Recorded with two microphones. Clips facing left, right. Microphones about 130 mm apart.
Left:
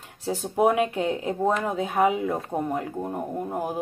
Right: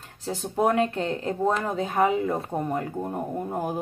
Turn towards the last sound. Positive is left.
turn(degrees=5)  # may be behind; listen again after turning